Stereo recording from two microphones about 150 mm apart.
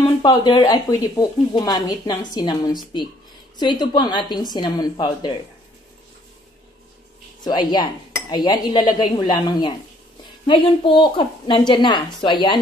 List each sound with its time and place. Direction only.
0.0 s speech: 30° left (ahead or behind)
7.4 s a woman's voice: 30° left (ahead or behind)